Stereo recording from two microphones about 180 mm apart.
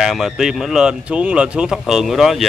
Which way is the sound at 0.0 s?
Centre (ahead or behind).